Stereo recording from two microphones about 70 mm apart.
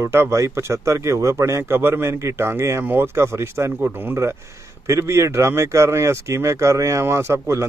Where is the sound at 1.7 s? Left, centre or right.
Right.